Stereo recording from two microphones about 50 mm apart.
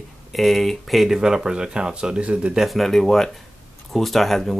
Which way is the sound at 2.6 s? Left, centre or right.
Centre.